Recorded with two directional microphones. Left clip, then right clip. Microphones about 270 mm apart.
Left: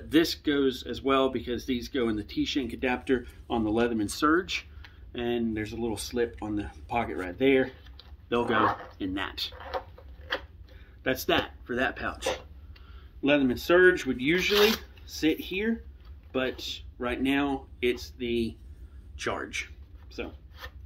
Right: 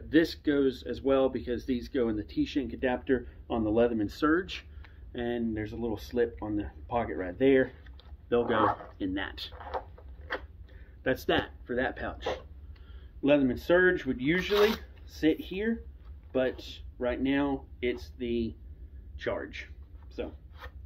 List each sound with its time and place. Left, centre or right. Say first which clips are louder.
0.1 s speech: left 1 dB; left
8.5 s speech: left 2 dB; centre
9.0 s speech: left 2 dB; left
9.6 s a sound: left 2 dB; centre
11.1 s speech: left 2 dB; left
19.1 s a sound: left 2 dB; left